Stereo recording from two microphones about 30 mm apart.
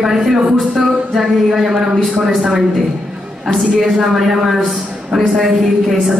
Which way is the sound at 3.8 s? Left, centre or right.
Centre.